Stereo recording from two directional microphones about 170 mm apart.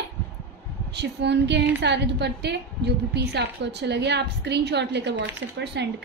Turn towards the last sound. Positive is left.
turn(degrees=-90)